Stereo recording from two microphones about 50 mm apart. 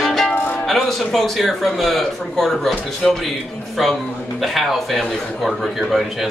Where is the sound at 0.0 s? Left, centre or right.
Centre.